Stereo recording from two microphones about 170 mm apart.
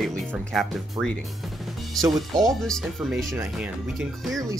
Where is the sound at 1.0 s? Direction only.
20° right (ahead or behind).